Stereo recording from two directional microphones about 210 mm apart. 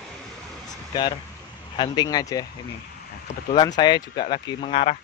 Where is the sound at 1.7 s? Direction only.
20° left (ahead or behind).